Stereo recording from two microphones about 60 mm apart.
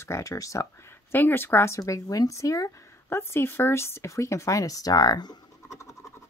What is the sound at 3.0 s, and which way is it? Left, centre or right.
Speech, left.